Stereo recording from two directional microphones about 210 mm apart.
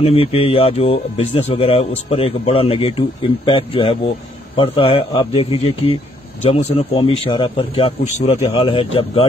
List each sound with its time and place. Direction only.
0.0 s a man's voice: 25° left (ahead or behind)